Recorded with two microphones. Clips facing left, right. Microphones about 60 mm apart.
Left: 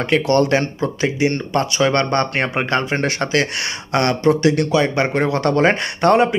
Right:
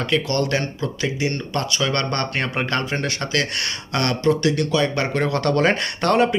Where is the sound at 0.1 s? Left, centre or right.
Left.